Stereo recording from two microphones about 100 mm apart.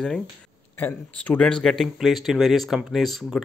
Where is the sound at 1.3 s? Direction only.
5° left (ahead or behind).